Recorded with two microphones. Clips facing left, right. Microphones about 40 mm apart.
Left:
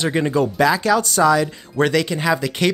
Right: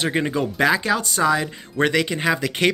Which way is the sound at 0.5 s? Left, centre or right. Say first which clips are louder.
Even; right.